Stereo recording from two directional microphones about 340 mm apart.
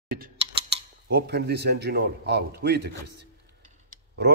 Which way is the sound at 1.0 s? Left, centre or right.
Right.